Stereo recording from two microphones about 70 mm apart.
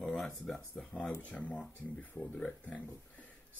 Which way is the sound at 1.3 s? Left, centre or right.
Left.